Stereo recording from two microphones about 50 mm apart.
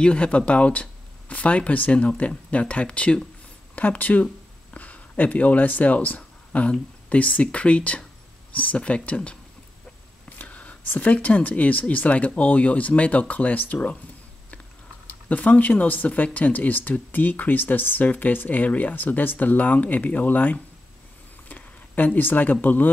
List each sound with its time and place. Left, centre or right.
0.0 s speech: left
10.4 s whispering: left
10.9 s speech: left
15.2 s speech: left